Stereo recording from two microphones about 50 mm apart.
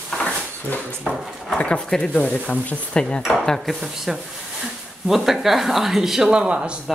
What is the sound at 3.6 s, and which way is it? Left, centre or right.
Speech, centre.